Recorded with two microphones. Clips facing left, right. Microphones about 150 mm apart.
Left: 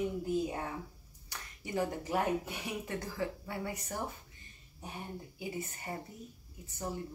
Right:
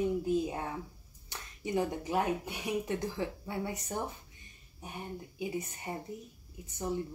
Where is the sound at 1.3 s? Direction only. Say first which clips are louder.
Right 4 dB; 20° right (ahead or behind).